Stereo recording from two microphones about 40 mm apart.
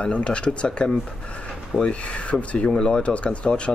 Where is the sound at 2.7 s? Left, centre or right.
Centre.